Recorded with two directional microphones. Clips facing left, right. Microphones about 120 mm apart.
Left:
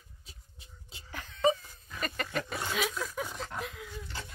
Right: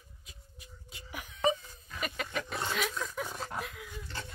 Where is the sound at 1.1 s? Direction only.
10° right (ahead or behind); by 3.3 s 5° left (ahead or behind).